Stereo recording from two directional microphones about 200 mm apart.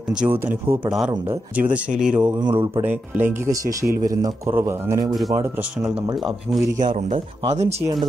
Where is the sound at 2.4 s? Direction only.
25° right (ahead or behind).